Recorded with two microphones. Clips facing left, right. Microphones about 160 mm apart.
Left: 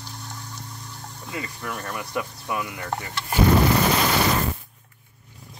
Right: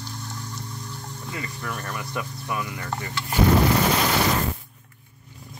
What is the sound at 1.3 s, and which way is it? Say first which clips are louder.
Speech: left 1 dB; 15° left (ahead or behind).